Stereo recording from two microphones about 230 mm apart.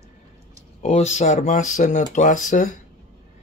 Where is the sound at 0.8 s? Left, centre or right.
Left.